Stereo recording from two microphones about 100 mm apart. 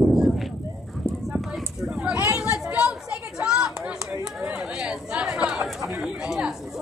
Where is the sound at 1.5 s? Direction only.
5° right (ahead or behind).